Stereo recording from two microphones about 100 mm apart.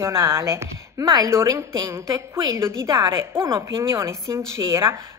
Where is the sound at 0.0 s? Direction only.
25° right (ahead or behind).